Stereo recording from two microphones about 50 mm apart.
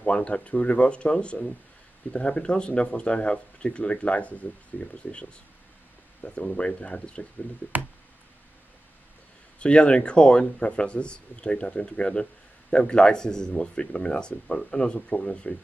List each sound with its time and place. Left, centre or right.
0.0 s speech: left
9.6 s a man's voice: left